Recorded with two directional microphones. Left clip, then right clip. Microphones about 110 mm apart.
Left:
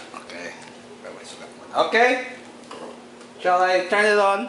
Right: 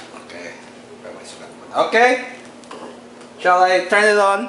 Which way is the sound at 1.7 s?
5° left (ahead or behind).